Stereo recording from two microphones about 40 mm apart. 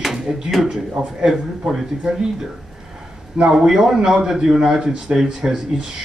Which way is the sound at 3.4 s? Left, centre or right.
Centre.